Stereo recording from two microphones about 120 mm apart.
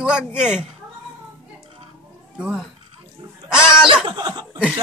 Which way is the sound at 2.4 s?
5° right (ahead or behind).